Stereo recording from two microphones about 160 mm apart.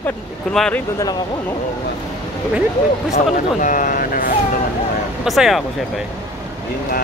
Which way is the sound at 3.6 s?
55° left (ahead or behind).